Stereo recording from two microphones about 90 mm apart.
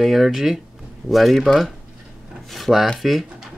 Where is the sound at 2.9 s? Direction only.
Centre (ahead or behind).